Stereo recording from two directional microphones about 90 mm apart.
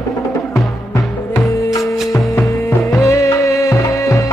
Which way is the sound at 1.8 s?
Centre (ahead or behind).